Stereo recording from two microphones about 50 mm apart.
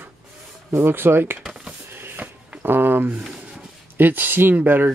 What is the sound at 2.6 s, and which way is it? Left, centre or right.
Speech, right.